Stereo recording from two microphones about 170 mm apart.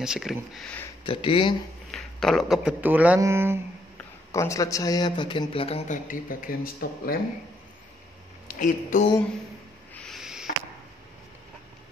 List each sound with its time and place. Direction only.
0.0 s speech: centre (ahead or behind)
1.0 s speech: 30° left (ahead or behind)
1.9 s speech: centre (ahead or behind); by 3.5 s 15° right (ahead or behind)
4.3 s a man's voice: 15° left (ahead or behind); by 5.9 s 35° left (ahead or behind)
5.9 s speech: 55° left (ahead or behind)
8.5 s speech: 50° left (ahead or behind)
9.9 s owl: centre (ahead or behind)